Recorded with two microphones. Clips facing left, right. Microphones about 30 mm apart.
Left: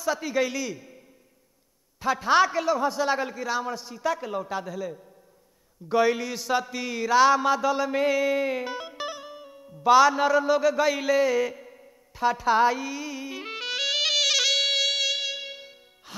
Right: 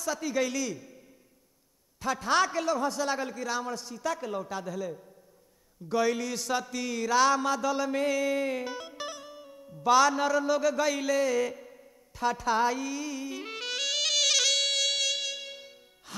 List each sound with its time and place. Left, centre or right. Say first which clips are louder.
0.0 s a man's voice: left 4 dB; centre